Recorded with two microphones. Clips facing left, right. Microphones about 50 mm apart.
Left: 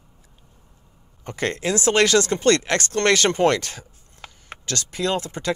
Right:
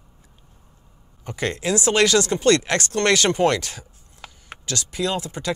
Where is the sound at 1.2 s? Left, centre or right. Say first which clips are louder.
Left 1 dB; left.